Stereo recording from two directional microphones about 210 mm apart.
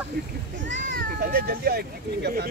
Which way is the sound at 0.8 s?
45° right (ahead or behind).